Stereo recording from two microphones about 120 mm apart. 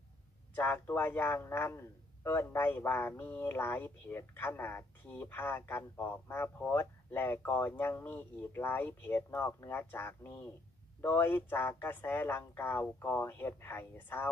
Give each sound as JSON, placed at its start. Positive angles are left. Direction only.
{"t": 0.6, "sound": "a man's voice", "side_deg": 20}